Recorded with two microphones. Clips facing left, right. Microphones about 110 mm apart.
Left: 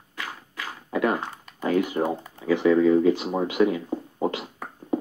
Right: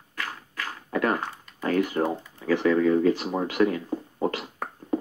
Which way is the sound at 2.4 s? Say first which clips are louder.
Left 2 dB; 20° left (ahead or behind).